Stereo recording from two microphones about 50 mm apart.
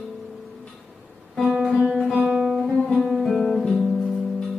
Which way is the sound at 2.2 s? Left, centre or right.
Centre.